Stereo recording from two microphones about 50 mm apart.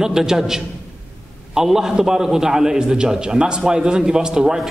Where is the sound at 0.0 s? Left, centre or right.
Centre.